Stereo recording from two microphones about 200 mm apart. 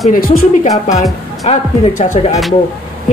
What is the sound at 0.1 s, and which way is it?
Speech, 45° left (ahead or behind).